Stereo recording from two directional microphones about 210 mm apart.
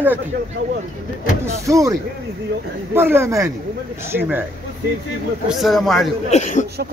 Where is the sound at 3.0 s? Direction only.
10° right (ahead or behind).